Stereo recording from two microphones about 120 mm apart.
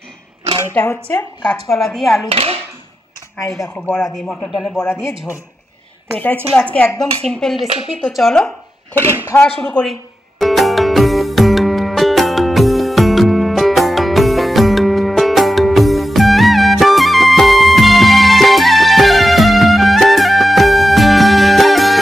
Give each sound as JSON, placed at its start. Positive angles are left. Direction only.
{"t": 1.7, "sound": "a man's voice", "side_deg": 0}
{"t": 2.2, "sound": "speech", "side_deg": -55}
{"t": 3.4, "sound": "speech", "side_deg": 20}
{"t": 3.9, "sound": "a man's voice", "side_deg": 0}
{"t": 6.1, "sound": "a man's voice", "side_deg": 10}
{"t": 9.6, "sound": "speech", "side_deg": 5}
{"t": 10.4, "sound": "music", "side_deg": 0}